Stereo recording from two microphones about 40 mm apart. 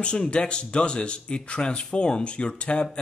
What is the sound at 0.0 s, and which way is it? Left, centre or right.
Speech, left.